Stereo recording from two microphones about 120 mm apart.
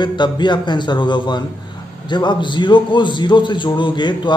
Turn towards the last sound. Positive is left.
turn(degrees=40)  # may be behind; listen again after turning